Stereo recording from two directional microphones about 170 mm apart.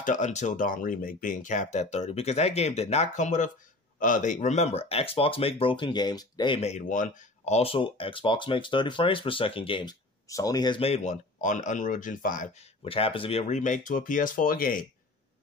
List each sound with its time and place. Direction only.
0.0 s speech: 45° left (ahead or behind)
12.8 s speech: 35° left (ahead or behind); by 14.8 s 55° left (ahead or behind)